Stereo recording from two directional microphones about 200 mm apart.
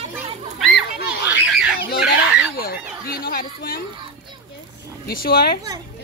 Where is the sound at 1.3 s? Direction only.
5° right (ahead or behind).